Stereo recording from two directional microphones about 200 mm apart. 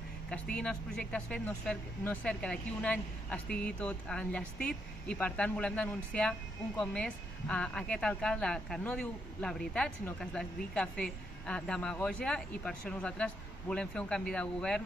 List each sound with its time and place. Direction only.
0.3 s speech: 5° left (ahead or behind)